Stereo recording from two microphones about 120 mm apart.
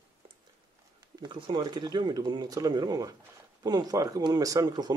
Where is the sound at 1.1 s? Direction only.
35° right (ahead or behind).